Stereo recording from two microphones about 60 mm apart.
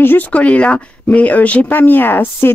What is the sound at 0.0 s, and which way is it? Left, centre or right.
Speech, left.